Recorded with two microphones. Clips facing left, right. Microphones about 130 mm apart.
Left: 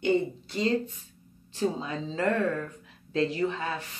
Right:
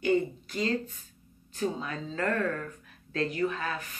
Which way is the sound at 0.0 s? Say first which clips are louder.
Left 1 dB; 25° left (ahead or behind).